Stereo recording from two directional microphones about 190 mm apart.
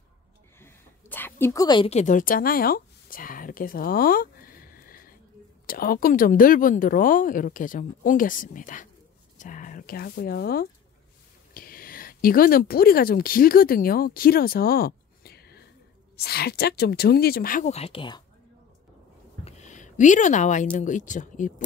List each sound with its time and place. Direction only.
0.6 s a woman's voice: 10° left (ahead or behind); by 18.2 s 25° left (ahead or behind)
19.4 s a sound: 40° left (ahead or behind)
20.7 s speech: 40° left (ahead or behind)